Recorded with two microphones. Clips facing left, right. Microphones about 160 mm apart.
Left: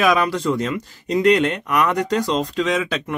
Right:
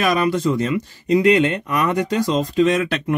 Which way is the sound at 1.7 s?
75° left (ahead or behind).